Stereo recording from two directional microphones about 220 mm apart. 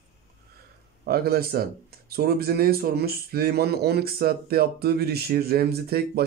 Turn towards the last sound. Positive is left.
turn(degrees=-45)  # may be behind; listen again after turning